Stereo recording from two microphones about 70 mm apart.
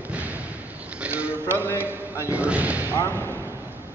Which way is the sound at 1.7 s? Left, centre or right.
Right.